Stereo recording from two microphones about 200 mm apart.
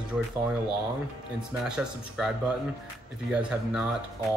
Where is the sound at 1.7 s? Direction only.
5° right (ahead or behind).